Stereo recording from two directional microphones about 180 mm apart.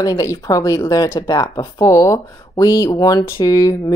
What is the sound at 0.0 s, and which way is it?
Speech, 20° left (ahead or behind).